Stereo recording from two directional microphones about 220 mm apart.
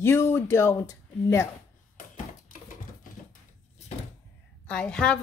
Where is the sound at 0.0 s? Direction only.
10° left (ahead or behind).